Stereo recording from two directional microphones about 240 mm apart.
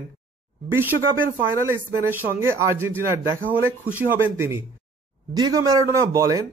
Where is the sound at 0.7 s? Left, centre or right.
Centre.